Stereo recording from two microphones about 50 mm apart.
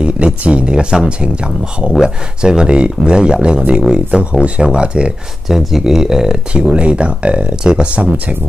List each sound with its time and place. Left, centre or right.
0.0 s speech: right
5.5 s speech: centre
6.5 s speech: right